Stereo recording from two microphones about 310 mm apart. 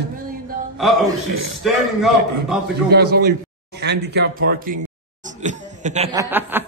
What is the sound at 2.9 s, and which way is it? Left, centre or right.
Speech, right.